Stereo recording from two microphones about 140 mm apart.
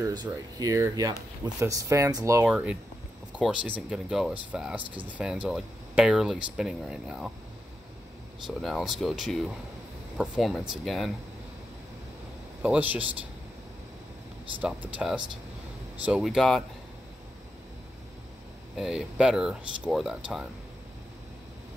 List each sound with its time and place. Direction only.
0.0 s speech: 30° right (ahead or behind)
2.4 s speech: 10° right (ahead or behind)
8.5 s speech: centre (ahead or behind)
12.6 s speech: 10° right (ahead or behind)
14.6 s speech: 10° right (ahead or behind)
18.8 s speech: 5° right (ahead or behind)